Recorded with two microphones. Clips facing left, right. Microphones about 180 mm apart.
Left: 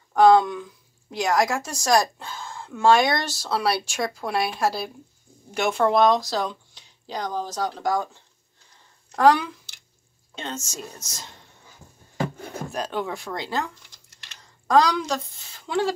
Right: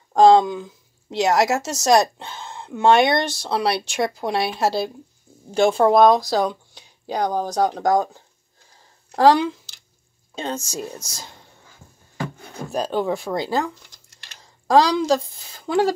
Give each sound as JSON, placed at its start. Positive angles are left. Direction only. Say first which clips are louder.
{"t": 0.1, "sound": "speech", "louder": "right 3 dB", "side_deg": -25}
{"t": 7.7, "sound": "speech", "louder": "right 6 dB", "side_deg": -45}
{"t": 9.1, "sound": "speech", "louder": "right 3 dB", "side_deg": -30}
{"t": 12.7, "sound": "speech", "louder": "right 7 dB", "side_deg": -35}
{"t": 14.7, "sound": "a woman's voice", "louder": "right 4 dB", "side_deg": -30}